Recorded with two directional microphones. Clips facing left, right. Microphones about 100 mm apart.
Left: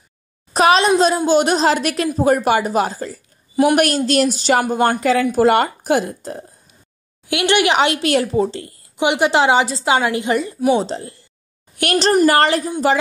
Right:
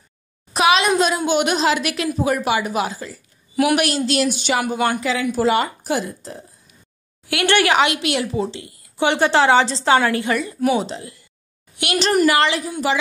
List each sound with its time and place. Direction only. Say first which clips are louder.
0.5 s a woman's voice: left 3 dB; 40° left (ahead or behind); by 6.4 s 55° left (ahead or behind)
7.2 s a woman's voice: left 1 dB; 20° left (ahead or behind)
7.8 s a woman's voice: left 3 dB; 35° left (ahead or behind)
8.9 s a woman's voice: left 1 dB; 15° left (ahead or behind); by 12.7 s 40° left (ahead or behind)